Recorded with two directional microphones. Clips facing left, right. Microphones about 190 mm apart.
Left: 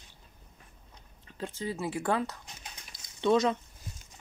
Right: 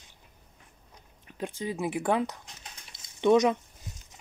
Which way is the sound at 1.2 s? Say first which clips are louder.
Right 2 dB; 15° right (ahead or behind).